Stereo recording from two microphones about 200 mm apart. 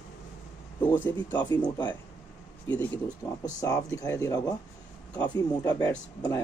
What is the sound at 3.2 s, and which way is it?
Speech, 15° left (ahead or behind).